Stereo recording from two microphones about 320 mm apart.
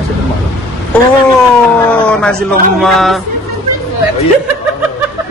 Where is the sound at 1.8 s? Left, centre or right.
Centre.